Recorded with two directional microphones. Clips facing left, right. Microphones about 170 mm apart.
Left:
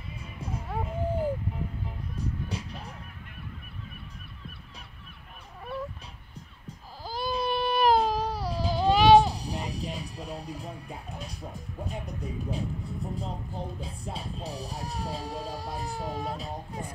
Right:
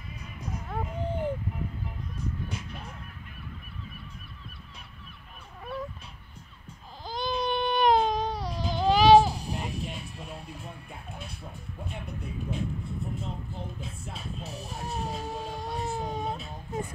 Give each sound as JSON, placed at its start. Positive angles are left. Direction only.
{"t": 0.4, "sound": "music", "side_deg": 30}
{"t": 0.7, "sound": "music", "side_deg": 5}
{"t": 2.1, "sound": "music", "side_deg": 35}
{"t": 7.1, "sound": "baby cry", "side_deg": 5}
{"t": 9.4, "sound": "music", "side_deg": 35}
{"t": 11.1, "sound": "speech", "side_deg": 40}
{"t": 15.8, "sound": "speech", "side_deg": -20}
{"t": 16.3, "sound": "music", "side_deg": 35}